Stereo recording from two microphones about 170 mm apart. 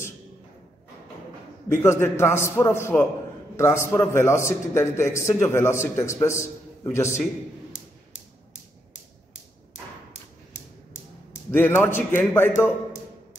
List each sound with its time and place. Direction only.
1.7 s a man's voice: 15° left (ahead or behind)
11.5 s a man's voice: 10° left (ahead or behind)